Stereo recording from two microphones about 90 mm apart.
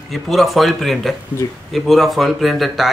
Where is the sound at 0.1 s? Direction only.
Centre (ahead or behind).